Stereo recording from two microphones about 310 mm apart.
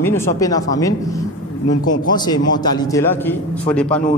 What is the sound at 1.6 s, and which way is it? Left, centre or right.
Speech, left.